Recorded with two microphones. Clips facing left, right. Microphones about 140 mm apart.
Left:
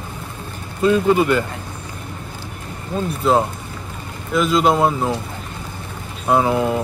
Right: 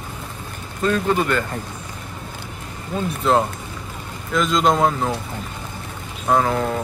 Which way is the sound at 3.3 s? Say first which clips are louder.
Left 1 dB; 5° left (ahead or behind).